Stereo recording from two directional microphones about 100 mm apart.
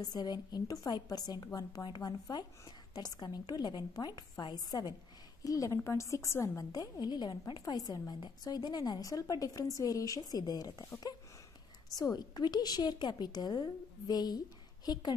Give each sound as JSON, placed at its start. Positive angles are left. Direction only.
{"t": 0.0, "sound": "a woman's voice", "side_deg": 45}
{"t": 11.9, "sound": "a woman's voice", "side_deg": 40}